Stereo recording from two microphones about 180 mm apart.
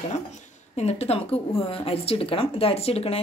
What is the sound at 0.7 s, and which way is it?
Speech, 35° left (ahead or behind).